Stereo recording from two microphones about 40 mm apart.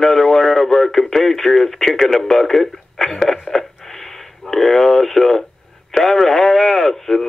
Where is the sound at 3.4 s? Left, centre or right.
Centre.